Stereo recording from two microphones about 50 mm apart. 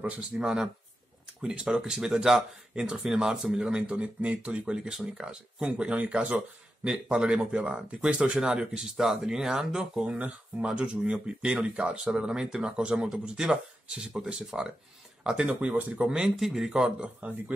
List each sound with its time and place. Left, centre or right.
0.0 s speech: right
0.4 s speech: centre
5.7 s speech: right
16.2 s speech: centre